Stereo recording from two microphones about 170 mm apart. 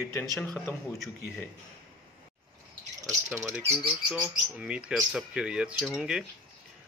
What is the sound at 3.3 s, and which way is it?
Speech, 15° right (ahead or behind).